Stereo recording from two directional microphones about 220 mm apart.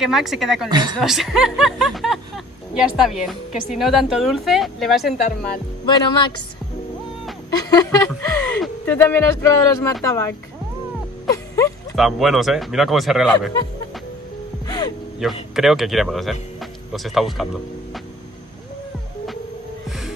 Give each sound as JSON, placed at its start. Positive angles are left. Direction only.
{"t": 0.0, "sound": "speech", "side_deg": 0}
{"t": 0.7, "sound": "speech", "side_deg": -20}
{"t": 0.9, "sound": "speech", "side_deg": 0}
{"t": 5.9, "sound": "a woman's voice", "side_deg": 20}
{"t": 7.5, "sound": "speech", "side_deg": 15}
{"t": 11.9, "sound": "speech", "side_deg": 0}
{"t": 15.2, "sound": "speech", "side_deg": 0}